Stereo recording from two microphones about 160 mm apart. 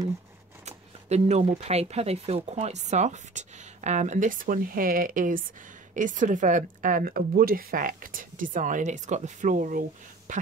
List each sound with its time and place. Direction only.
0.7 s speech: 40° right (ahead or behind)